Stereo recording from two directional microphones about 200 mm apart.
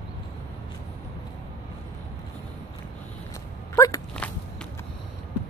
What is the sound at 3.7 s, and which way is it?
Sneeze, 15° left (ahead or behind).